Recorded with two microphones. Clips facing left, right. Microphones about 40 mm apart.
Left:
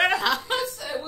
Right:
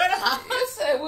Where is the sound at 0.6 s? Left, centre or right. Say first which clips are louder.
Right 7 dB; right.